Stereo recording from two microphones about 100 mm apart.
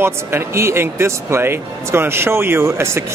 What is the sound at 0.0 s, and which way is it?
Speech, 25° right (ahead or behind).